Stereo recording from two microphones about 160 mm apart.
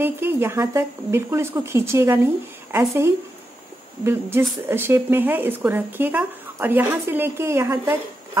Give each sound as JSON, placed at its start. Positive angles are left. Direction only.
{"t": 0.0, "sound": "speech", "side_deg": -15}